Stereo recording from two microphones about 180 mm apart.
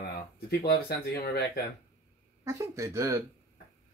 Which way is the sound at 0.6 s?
55° left (ahead or behind).